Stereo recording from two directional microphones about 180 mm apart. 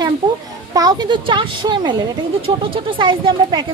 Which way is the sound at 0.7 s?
25° right (ahead or behind).